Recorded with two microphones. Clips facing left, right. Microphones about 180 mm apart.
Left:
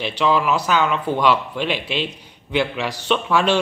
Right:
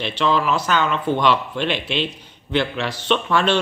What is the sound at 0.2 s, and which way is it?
A man's voice, 10° left (ahead or behind).